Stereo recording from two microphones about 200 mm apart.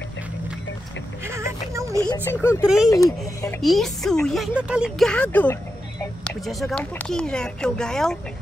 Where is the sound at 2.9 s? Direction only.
15° left (ahead or behind).